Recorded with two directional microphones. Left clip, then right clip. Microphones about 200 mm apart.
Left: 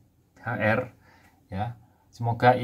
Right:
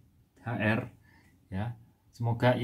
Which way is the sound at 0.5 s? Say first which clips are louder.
Left 6 dB; 15° right (ahead or behind).